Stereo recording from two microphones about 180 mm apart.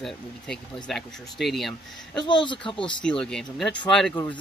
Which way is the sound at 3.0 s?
5° left (ahead or behind).